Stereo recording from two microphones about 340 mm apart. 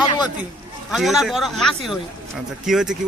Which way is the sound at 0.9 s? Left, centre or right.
Centre.